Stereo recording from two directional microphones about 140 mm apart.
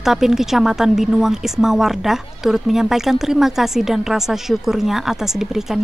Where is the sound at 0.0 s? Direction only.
5° right (ahead or behind).